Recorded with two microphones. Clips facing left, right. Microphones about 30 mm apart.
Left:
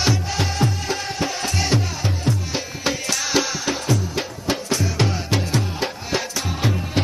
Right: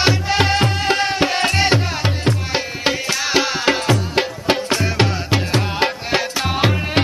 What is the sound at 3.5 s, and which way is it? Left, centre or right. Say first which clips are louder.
Music: right 6 dB; right.